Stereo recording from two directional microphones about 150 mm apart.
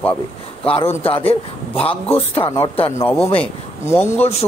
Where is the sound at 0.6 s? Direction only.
40° left (ahead or behind).